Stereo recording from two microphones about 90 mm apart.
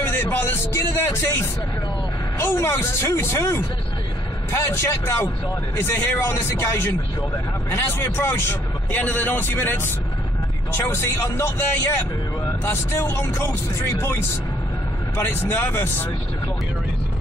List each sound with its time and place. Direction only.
0.0 s a man's voice: 25° left (ahead or behind)
15.1 s a man's voice: 25° left (ahead or behind)